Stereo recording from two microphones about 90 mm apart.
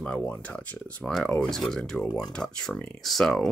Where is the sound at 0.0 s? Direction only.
15° left (ahead or behind).